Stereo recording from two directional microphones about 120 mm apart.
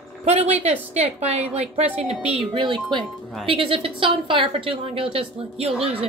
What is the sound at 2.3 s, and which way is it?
A woman's voice, 45° right (ahead or behind).